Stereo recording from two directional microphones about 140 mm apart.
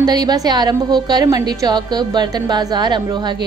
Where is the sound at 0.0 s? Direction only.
30° right (ahead or behind).